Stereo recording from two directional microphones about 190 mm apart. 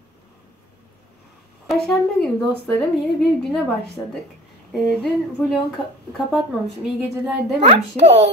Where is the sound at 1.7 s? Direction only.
Centre (ahead or behind).